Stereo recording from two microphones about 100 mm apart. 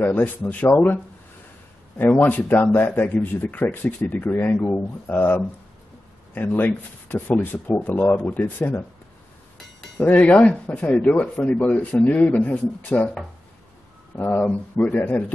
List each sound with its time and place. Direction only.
0.0 s speech: 15° left (ahead or behind)
2.0 s speech: 15° left (ahead or behind)
9.9 s speech: 15° left (ahead or behind)
14.1 s speech: 15° left (ahead or behind)